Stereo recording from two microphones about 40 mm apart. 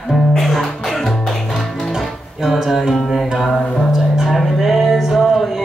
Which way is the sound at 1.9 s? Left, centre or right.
Centre.